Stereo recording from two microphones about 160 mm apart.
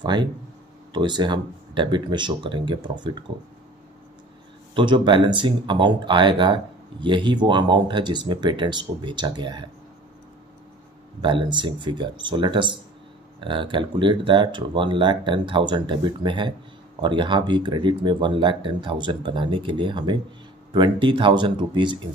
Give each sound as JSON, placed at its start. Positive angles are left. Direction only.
{"t": 0.0, "sound": "speech", "side_deg": -30}
{"t": 4.7, "sound": "speech", "side_deg": -30}
{"t": 11.1, "sound": "speech", "side_deg": -30}